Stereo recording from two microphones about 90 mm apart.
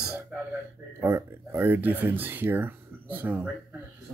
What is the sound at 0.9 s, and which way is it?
Speech, 30° right (ahead or behind).